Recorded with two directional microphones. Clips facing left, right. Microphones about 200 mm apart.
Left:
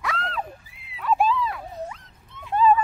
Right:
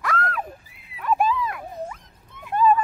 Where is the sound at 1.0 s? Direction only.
15° right (ahead or behind).